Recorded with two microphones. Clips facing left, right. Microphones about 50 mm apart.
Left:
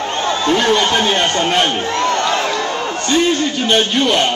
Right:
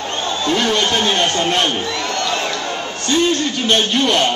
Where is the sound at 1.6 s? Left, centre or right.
Left.